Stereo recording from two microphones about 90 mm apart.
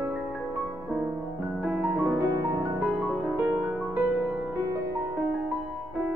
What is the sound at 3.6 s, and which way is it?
Music, 15° right (ahead or behind).